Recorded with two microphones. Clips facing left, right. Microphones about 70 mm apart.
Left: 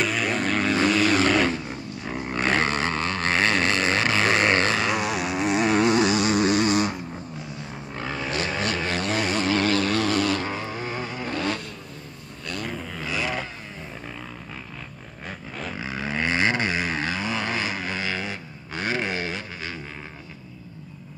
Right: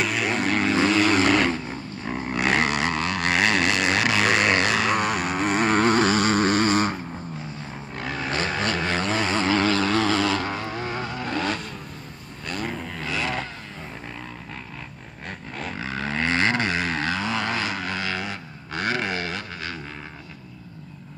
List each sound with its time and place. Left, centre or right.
0.0 s vehicle: centre
1.5 s vehicle: right
2.6 s a sound: left
4.8 s vehicle: right
10.9 s vehicle: left
11.3 s vehicle: right
12.7 s vehicle: centre
13.0 s vehicle: centre
15.2 s roaring cats: centre
15.8 s vehicle: centre